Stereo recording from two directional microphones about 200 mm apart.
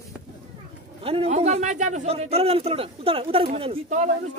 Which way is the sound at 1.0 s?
30° right (ahead or behind).